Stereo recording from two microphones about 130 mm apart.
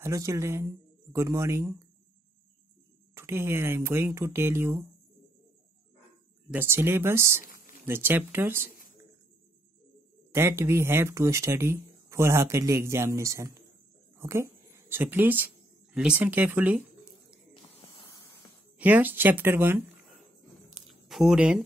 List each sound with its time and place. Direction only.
0.0 s speech: 20° right (ahead or behind)
3.2 s speech: 20° right (ahead or behind)
6.5 s speech: 15° right (ahead or behind)
7.4 s a sound: 90° left
7.8 s speech: 15° right (ahead or behind)
10.3 s a woman's voice: 20° right (ahead or behind)
18.8 s speech: 15° right (ahead or behind)
20.7 s a sound: centre (ahead or behind)